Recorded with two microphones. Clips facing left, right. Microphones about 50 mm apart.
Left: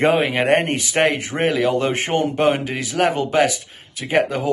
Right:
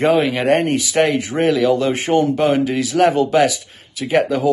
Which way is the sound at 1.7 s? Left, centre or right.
Left.